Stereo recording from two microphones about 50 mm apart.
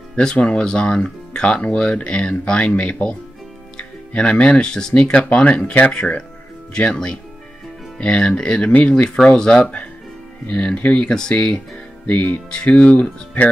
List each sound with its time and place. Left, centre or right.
0.1 s speech: centre
9.6 s speech: left
11.1 s speech: centre
12.1 s speech: left